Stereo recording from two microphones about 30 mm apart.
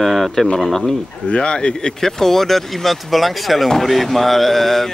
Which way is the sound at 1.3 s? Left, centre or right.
Left.